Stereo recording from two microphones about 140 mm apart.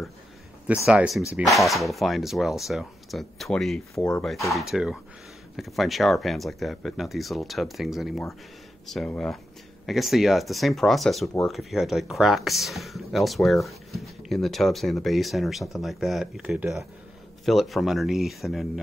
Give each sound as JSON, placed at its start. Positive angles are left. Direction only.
{"t": 0.8, "sound": "speech", "side_deg": 0}